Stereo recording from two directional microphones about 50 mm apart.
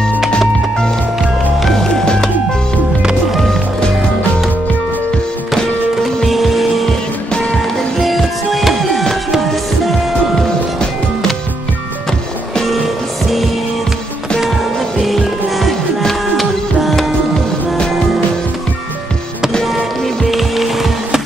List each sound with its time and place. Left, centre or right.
0.4 s music: centre
2.0 s music: centre
5.6 s music: centre
6.9 s music: centre
7.5 s music: centre
12.6 s music: centre
14.5 s music: centre
19.6 s music: centre